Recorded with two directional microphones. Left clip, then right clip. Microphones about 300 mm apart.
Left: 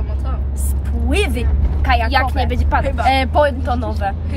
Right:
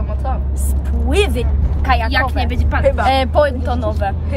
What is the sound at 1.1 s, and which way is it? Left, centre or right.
Speech, centre.